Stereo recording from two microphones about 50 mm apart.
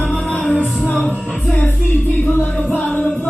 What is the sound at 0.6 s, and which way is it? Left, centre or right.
Music, left.